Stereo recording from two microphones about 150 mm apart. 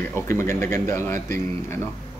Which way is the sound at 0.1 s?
20° left (ahead or behind).